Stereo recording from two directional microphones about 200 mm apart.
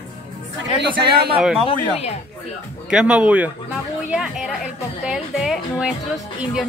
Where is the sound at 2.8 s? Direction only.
5° right (ahead or behind).